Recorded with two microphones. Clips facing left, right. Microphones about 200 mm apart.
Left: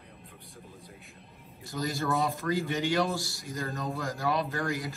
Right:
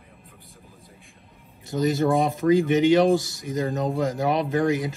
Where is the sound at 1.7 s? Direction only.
20° right (ahead or behind).